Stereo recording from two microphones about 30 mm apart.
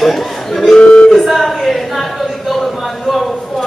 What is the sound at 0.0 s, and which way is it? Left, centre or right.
Speech, centre.